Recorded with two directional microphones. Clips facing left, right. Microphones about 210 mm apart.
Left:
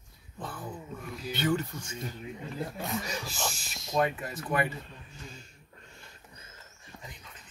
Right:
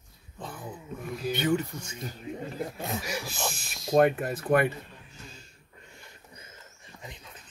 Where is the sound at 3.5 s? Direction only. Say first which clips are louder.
Right 8 dB; 55° right (ahead or behind).